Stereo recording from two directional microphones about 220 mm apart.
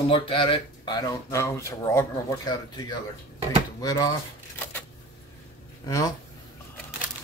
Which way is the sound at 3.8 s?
15° left (ahead or behind).